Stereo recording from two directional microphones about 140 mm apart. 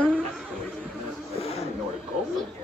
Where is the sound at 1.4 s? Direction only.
45° left (ahead or behind).